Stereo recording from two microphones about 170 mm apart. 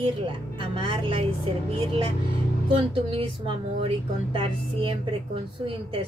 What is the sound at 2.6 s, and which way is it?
Speech, 30° right (ahead or behind).